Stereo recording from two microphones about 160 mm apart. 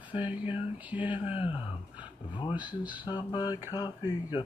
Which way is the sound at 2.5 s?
10° right (ahead or behind).